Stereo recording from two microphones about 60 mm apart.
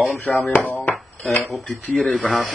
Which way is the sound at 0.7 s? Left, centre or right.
Left.